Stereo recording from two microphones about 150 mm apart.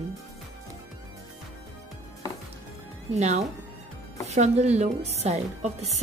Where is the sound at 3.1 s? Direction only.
45° right (ahead or behind).